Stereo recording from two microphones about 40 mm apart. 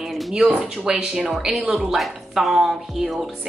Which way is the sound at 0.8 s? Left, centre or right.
Centre.